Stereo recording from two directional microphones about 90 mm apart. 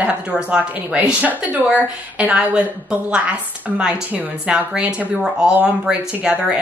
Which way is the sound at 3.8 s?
15° right (ahead or behind).